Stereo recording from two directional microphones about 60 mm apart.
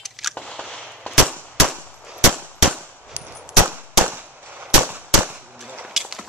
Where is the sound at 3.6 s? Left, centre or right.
Right.